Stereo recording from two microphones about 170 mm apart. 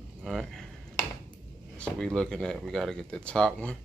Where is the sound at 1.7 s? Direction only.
5° left (ahead or behind).